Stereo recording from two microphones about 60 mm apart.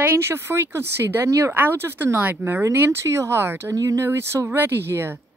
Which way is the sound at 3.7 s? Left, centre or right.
Right.